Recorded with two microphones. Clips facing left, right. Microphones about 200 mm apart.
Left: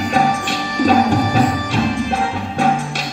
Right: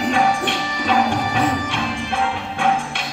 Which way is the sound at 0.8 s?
40° left (ahead or behind).